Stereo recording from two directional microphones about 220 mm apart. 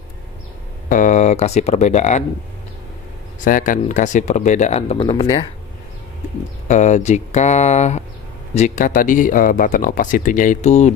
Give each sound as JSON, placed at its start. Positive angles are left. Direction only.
{"t": 0.8, "sound": "speech", "side_deg": 35}
{"t": 3.4, "sound": "speech", "side_deg": 40}
{"t": 6.7, "sound": "speech", "side_deg": 35}